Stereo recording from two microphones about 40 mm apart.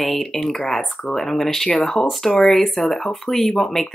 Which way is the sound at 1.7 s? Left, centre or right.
Centre.